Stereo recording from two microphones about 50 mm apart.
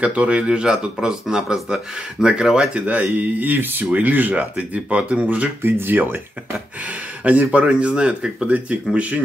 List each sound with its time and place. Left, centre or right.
0.0 s speech: right
2.7 s speech: right
5.6 s speech: right
7.2 s speech: right